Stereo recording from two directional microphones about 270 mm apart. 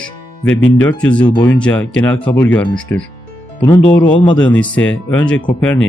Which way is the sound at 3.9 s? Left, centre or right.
Centre.